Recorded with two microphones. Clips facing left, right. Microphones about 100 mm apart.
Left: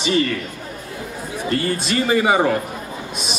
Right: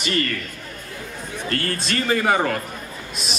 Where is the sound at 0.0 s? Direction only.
15° left (ahead or behind).